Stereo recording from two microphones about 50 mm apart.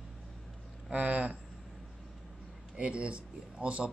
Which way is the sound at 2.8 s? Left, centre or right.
Right.